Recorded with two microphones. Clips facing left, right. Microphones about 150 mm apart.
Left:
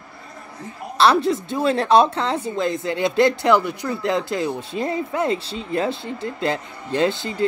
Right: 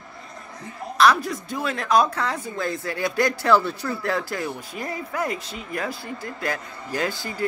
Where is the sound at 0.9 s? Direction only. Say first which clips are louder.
Left 3 dB; 30° left (ahead or behind).